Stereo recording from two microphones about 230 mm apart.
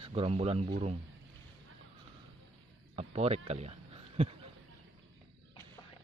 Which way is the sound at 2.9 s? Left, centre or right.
Right.